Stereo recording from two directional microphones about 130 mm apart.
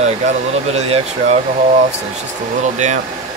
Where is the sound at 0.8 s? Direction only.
55° right (ahead or behind).